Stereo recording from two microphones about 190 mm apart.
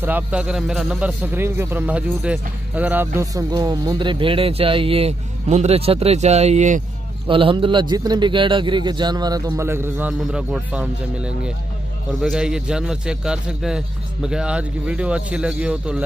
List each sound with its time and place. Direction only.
0.0 s a man's voice: 10° right (ahead or behind); by 6.8 s 35° right (ahead or behind)
7.2 s a man's voice: 25° right (ahead or behind); by 16.0 s 5° right (ahead or behind)